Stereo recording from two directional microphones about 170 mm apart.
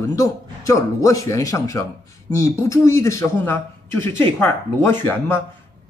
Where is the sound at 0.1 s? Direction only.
20° left (ahead or behind).